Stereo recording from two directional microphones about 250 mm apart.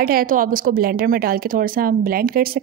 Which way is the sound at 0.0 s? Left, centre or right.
Right.